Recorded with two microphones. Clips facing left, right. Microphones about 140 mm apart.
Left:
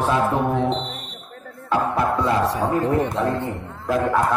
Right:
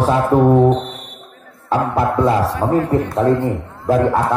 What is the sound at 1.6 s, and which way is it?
A man's voice, 30° right (ahead or behind).